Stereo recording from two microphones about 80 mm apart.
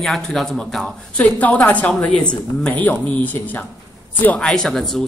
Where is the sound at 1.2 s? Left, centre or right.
Centre.